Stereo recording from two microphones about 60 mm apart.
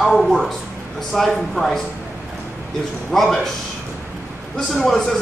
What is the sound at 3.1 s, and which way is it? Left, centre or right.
Speech, centre.